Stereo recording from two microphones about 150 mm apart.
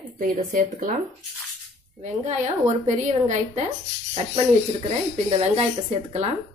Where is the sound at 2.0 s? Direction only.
50° right (ahead or behind).